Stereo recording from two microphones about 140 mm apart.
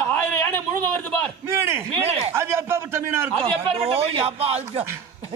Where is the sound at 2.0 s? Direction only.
45° right (ahead or behind).